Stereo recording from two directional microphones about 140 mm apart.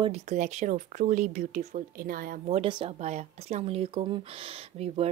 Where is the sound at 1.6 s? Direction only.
90° right.